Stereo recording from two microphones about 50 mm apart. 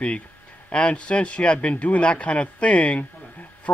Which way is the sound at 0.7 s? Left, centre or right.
Left.